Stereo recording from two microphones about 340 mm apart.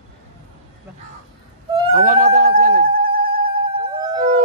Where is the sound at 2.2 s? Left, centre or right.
Right.